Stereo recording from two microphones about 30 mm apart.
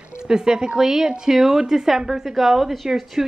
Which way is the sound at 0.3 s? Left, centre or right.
Right.